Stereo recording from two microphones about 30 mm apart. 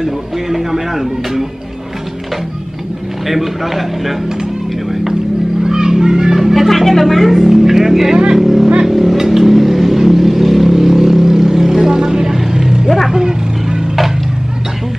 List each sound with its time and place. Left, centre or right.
0.0 s speech: centre
3.3 s a man's voice: centre
5.6 s children playing: right
6.3 s music: centre
6.7 s a man's voice: centre
8.8 s vehicle: centre